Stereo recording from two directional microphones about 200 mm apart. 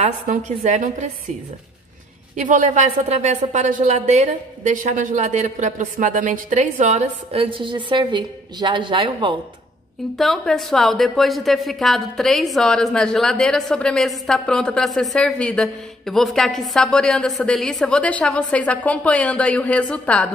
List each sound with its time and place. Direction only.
0.0 s a woman's voice: 35° right (ahead or behind)
2.3 s a woman's voice: 40° right (ahead or behind)
10.1 s a woman's voice: centre (ahead or behind)